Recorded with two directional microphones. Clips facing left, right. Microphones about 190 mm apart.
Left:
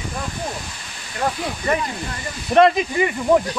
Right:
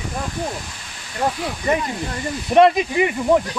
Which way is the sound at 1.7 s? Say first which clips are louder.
Right 2 dB; 20° right (ahead or behind).